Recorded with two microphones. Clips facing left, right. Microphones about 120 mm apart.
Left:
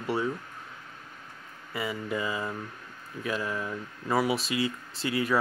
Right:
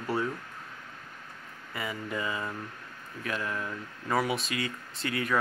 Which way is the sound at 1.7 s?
25° left (ahead or behind).